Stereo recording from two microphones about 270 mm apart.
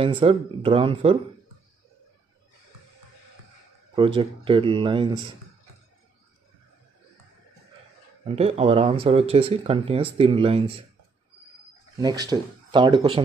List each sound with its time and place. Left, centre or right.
0.0 s speech: centre
3.9 s speech: centre
8.4 s speech: right
12.0 s speech: centre